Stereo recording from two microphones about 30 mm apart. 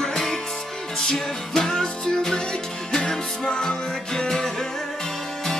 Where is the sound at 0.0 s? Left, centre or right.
Left.